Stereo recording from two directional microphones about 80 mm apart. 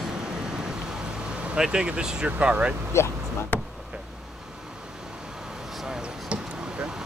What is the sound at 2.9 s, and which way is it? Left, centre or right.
Speech, left.